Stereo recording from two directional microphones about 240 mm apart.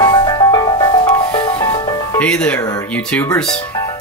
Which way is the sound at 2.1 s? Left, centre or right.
Centre.